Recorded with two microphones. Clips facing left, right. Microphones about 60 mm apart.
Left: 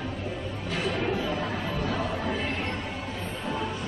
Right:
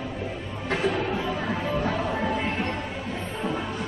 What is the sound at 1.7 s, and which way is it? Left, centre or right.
Music, right.